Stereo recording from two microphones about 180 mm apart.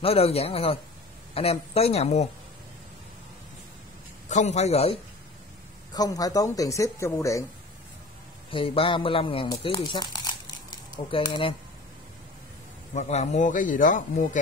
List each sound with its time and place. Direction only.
0.0 s speech: 35° left (ahead or behind)
4.3 s speech: 40° left (ahead or behind)
5.9 s speech: 20° left (ahead or behind)
8.5 s speech: 30° left (ahead or behind)
12.9 s speech: 40° left (ahead or behind)